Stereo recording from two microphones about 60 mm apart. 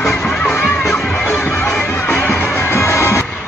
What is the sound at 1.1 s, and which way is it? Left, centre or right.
Music, left.